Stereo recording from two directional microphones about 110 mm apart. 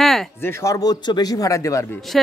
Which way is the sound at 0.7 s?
35° left (ahead or behind).